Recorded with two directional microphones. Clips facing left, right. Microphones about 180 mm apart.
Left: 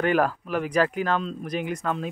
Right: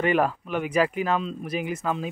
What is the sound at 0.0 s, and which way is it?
Speech, centre (ahead or behind).